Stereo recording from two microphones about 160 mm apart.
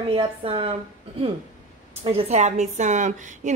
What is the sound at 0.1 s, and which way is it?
Speech, 30° right (ahead or behind).